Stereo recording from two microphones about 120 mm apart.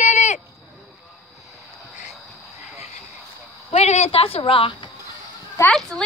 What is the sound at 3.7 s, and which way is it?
Speech, 65° left (ahead or behind).